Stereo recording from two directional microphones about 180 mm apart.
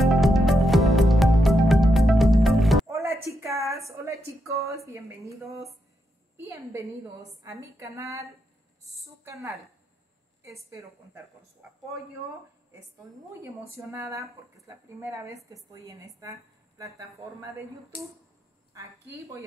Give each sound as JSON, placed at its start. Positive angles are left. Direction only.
{"t": 0.0, "sound": "music", "side_deg": 0}
{"t": 2.9, "sound": "a sound", "side_deg": -15}
{"t": 4.5, "sound": "speech", "side_deg": -15}
{"t": 6.3, "sound": "speech", "side_deg": -15}
{"t": 13.4, "sound": "speech", "side_deg": -15}
{"t": 18.7, "sound": "speech", "side_deg": -15}